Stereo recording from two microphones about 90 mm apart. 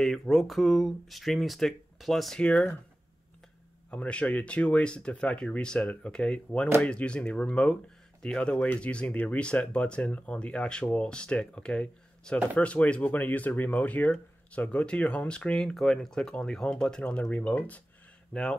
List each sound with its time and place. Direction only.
0.0 s speech: 5° left (ahead or behind)
3.9 s speech: 15° left (ahead or behind)